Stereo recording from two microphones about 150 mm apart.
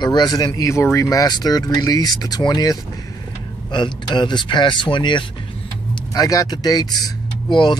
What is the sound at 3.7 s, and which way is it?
Speech, 30° left (ahead or behind).